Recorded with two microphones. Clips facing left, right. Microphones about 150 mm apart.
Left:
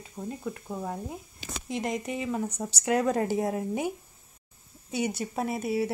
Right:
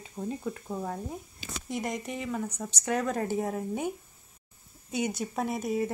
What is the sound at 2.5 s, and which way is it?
Speech, 30° left (ahead or behind).